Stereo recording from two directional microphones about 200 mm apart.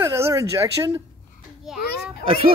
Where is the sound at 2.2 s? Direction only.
25° right (ahead or behind).